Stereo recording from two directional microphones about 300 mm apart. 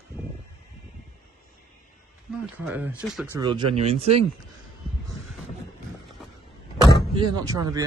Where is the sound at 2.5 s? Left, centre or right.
Centre.